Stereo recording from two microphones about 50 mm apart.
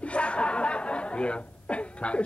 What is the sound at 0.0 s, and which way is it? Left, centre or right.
Chuckle, left.